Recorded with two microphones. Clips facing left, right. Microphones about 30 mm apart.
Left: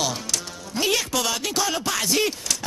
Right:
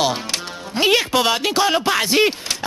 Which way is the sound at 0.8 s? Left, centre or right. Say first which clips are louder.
Right 7 dB; right.